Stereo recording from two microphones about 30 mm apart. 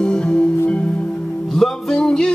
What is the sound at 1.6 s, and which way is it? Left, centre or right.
Music, centre.